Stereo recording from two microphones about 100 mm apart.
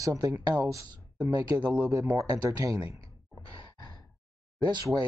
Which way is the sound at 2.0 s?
40° right (ahead or behind).